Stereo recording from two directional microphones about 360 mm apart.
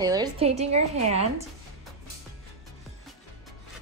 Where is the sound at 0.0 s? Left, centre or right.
Centre.